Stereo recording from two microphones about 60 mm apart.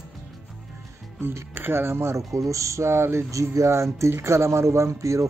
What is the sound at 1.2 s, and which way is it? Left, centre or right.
Speech, right.